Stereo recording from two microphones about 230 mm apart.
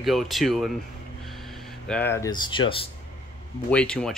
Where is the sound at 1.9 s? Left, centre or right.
Centre.